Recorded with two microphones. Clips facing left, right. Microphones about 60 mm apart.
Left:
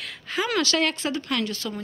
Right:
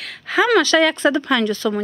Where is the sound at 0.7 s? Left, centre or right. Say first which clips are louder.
Right 9 dB; right.